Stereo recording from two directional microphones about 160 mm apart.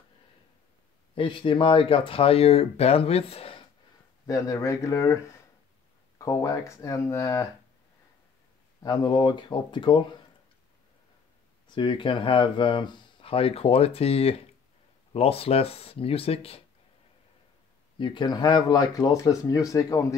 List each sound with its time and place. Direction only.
1.1 s speech: 30° left (ahead or behind)
4.3 s speech: 20° left (ahead or behind)
8.8 s speech: 25° left (ahead or behind)
11.7 s speech: 30° left (ahead or behind)
17.9 s speech: 30° left (ahead or behind)